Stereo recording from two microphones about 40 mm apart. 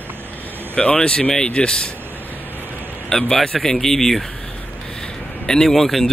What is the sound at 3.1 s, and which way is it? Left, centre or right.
Speech, centre.